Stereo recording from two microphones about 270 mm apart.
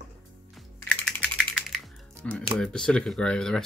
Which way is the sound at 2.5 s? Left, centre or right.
Centre.